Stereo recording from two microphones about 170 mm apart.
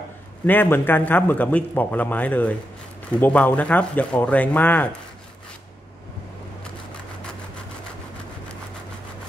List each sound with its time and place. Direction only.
0.5 s a man's voice: 10° left (ahead or behind)